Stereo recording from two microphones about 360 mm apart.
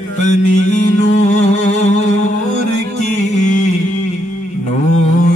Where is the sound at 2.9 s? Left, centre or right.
Centre.